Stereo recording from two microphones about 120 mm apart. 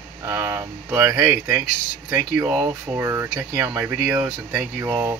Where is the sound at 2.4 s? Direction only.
10° right (ahead or behind).